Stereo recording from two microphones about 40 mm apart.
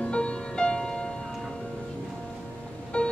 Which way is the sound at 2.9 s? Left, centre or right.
Left.